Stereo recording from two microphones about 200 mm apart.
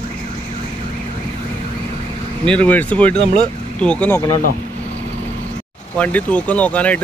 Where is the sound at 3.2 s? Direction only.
25° right (ahead or behind).